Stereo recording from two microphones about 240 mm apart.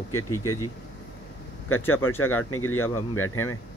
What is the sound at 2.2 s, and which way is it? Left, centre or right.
Speech, left.